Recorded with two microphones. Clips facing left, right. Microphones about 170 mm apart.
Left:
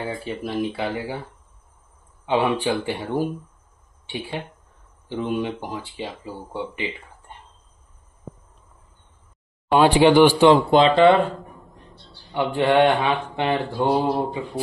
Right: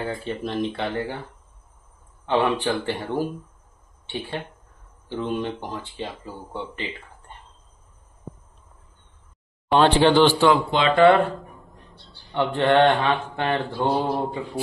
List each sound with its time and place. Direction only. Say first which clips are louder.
0.2 s mantra: even; 10° left (ahead or behind)
5.0 s mantra: left 2 dB; 10° left (ahead or behind)
9.7 s mantra: left 2 dB; 10° left (ahead or behind)
10.5 s speech: left 6 dB; 35° left (ahead or behind)
10.9 s mantra: right 4 dB; 15° left (ahead or behind)
12.4 s mantra: even; 10° left (ahead or behind)